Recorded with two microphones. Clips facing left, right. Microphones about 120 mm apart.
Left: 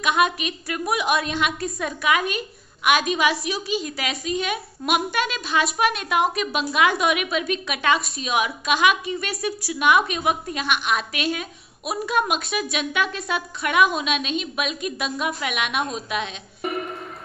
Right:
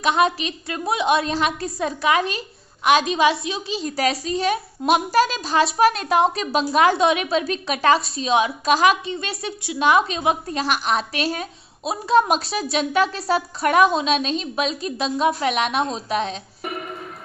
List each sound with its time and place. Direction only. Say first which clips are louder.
0.0 s a woman's voice: right 2 dB; 30° right (ahead or behind)